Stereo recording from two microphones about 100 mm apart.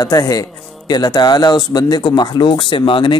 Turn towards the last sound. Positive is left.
turn(degrees=60)  # may be behind; listen again after turning